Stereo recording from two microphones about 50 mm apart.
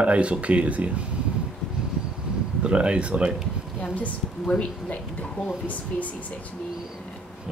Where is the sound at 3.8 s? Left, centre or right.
Left.